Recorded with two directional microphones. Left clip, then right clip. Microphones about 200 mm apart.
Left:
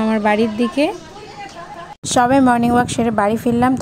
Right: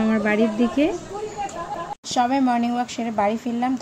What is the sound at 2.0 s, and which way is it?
A woman's voice, 35° left (ahead or behind).